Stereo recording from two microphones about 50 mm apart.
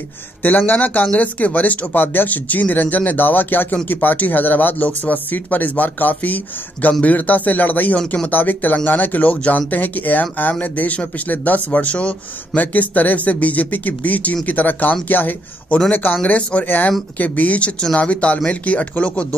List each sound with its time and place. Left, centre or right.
0.4 s speech: left
16.3 s speech: left
16.6 s speech: left